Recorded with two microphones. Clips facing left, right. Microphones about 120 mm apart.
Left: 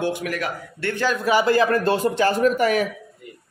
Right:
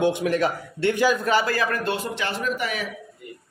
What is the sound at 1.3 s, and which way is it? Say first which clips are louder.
Speech: left 5 dB; 25° left (ahead or behind).